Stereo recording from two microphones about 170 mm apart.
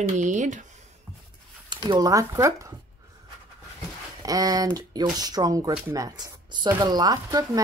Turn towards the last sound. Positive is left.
turn(degrees=-25)  # may be behind; listen again after turning